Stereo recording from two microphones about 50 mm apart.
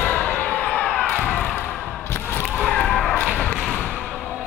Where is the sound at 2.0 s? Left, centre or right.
Left.